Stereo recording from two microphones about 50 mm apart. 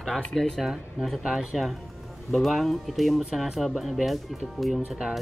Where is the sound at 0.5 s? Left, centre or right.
Centre.